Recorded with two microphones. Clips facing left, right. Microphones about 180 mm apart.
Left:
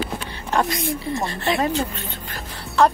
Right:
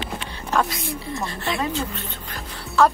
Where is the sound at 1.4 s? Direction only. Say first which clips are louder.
Left 4 dB; 55° left (ahead or behind).